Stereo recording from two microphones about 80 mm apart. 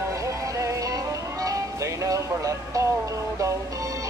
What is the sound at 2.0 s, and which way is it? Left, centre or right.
Music, right.